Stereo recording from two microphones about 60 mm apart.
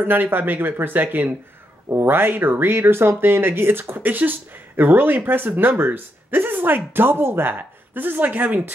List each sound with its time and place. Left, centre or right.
0.0 s speech: right